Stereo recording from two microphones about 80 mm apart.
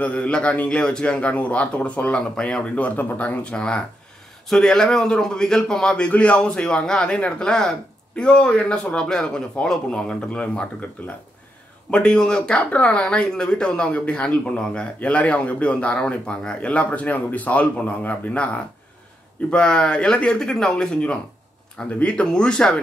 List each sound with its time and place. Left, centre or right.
0.0 s speech: centre
19.5 s speech: centre